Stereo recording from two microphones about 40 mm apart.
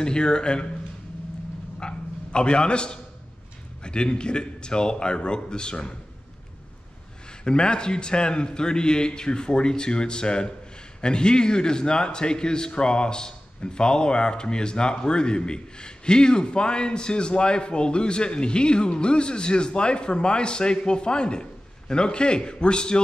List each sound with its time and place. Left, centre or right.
0.0 s a man's voice: left
1.8 s a sound: left
3.8 s a man's voice: left
7.4 s a man's voice: left